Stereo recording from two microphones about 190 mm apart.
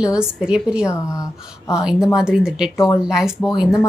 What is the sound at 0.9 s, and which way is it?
Speech, 15° left (ahead or behind).